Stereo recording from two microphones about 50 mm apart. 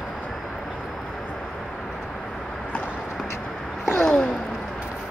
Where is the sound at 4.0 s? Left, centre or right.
Left.